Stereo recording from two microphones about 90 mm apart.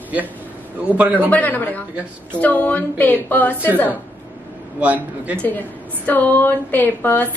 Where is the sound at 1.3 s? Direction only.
20° left (ahead or behind).